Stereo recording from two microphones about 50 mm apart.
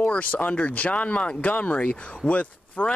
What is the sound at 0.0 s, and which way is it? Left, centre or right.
Speech, left.